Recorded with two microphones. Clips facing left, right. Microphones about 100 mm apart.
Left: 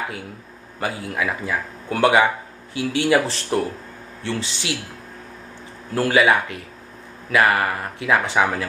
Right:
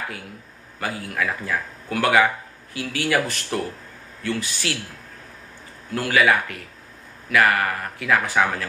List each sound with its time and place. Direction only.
0.7 s a man's voice: 20° left (ahead or behind)
5.9 s a man's voice: 25° left (ahead or behind)